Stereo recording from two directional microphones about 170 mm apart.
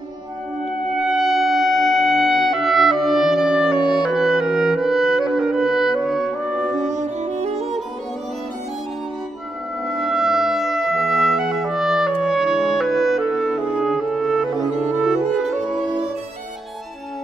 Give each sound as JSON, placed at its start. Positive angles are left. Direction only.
{"t": 0.9, "sound": "music", "side_deg": -5}
{"t": 4.0, "sound": "clarinet", "side_deg": -5}
{"t": 6.9, "sound": "music", "side_deg": -45}
{"t": 9.8, "sound": "music", "side_deg": 0}